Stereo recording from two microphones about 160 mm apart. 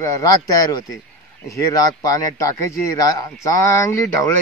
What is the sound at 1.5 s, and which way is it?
A man's voice, 20° left (ahead or behind).